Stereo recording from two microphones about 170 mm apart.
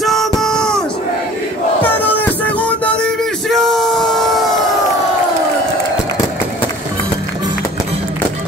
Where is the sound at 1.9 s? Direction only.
10° left (ahead or behind).